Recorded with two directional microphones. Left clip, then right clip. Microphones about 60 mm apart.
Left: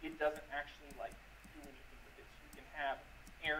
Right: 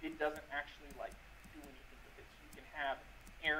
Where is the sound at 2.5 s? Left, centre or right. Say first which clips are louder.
Even; right.